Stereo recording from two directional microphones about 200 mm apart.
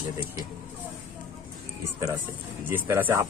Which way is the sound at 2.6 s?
10° right (ahead or behind).